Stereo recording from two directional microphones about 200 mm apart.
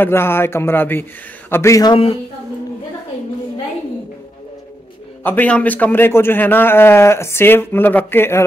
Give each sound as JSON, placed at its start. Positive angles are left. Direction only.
{"t": 0.0, "sound": "a man's voice", "side_deg": 10}
{"t": 5.2, "sound": "a man's voice", "side_deg": 10}